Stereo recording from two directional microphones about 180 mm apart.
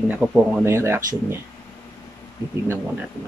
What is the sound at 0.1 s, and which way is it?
Speech, 10° right (ahead or behind).